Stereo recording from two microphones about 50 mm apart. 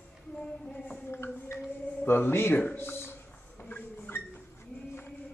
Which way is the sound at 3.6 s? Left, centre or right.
Left.